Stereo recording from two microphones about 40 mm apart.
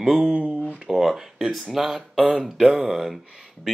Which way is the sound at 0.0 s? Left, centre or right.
Centre.